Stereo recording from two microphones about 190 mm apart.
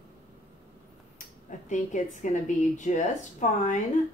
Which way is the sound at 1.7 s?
40° left (ahead or behind).